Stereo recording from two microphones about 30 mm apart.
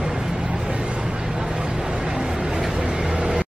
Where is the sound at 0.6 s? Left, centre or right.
Right.